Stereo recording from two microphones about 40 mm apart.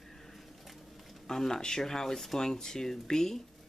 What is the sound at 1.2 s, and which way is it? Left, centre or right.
Speech, centre.